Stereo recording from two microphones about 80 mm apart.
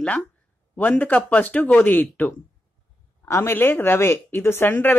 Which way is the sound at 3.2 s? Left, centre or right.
Left.